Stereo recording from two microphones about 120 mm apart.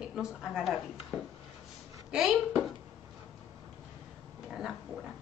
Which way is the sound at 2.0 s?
5° right (ahead or behind).